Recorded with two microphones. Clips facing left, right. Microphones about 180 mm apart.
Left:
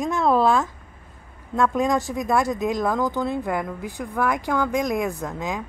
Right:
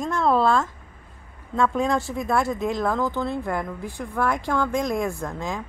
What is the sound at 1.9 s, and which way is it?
Speech, 15° left (ahead or behind).